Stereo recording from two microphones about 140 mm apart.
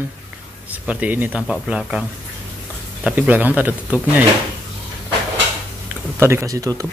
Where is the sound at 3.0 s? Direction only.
10° right (ahead or behind).